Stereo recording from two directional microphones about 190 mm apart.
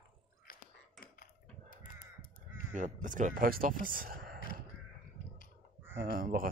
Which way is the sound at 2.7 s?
40° right (ahead or behind).